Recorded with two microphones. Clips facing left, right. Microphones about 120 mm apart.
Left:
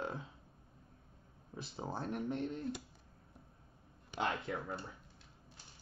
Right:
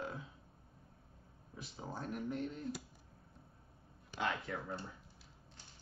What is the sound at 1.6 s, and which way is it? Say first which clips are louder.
Speech: left 4 dB; 30° left (ahead or behind).